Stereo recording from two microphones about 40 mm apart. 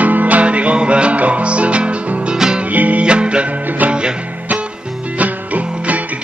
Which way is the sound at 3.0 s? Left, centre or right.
Right.